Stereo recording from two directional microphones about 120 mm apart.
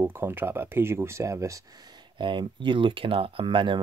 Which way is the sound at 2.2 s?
40° right (ahead or behind).